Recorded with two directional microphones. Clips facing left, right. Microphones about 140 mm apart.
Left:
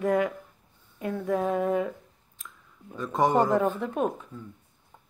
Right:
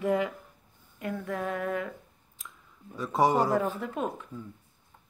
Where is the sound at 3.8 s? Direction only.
20° left (ahead or behind).